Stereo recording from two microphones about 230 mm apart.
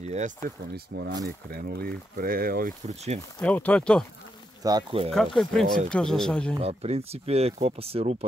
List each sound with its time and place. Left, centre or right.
0.0 s speech: right
0.7 s speech: right
1.2 s speech: right
3.3 s speech: centre
4.6 s speech: right
5.1 s speech: centre
6.5 s speech: right